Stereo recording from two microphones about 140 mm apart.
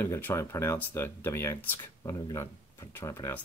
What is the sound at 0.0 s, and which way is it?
Speech, 20° left (ahead or behind).